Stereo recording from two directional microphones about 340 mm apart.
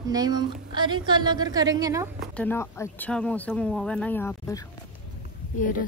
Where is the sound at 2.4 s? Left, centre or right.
Centre.